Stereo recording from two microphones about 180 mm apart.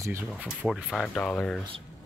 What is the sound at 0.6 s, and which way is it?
Speech, centre (ahead or behind).